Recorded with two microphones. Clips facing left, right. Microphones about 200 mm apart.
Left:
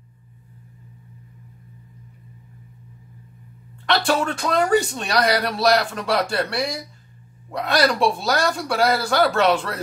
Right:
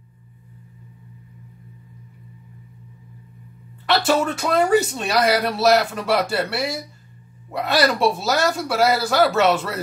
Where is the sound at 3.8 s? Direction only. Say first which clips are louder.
Right 2 dB; 5° right (ahead or behind).